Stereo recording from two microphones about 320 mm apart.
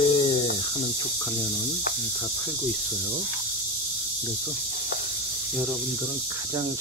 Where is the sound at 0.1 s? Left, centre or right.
Centre.